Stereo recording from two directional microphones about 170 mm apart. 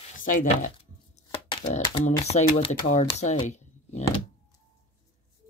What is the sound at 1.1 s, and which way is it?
Shuffling cards, 30° left (ahead or behind).